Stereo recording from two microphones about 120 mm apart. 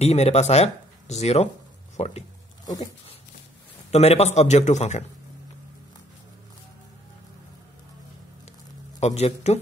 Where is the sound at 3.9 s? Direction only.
60° left (ahead or behind).